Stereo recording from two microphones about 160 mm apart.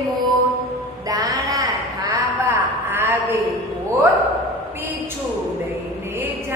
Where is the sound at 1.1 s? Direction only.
20° right (ahead or behind).